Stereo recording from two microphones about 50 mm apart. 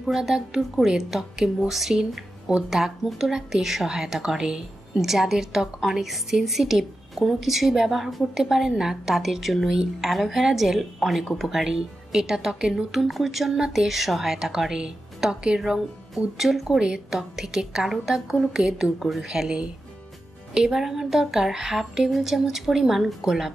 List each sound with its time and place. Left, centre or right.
0.0 s a woman's voice: centre
12.9 s a woman's voice: centre